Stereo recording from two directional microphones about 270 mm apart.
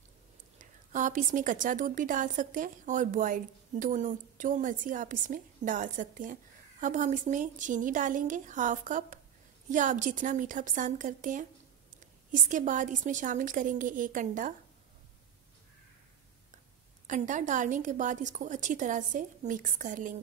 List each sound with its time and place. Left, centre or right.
0.6 s a woman's voice: right
17.1 s a woman's voice: right